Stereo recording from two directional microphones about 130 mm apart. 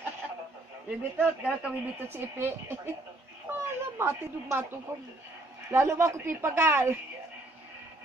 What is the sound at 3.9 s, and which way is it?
A woman's voice, 20° right (ahead or behind).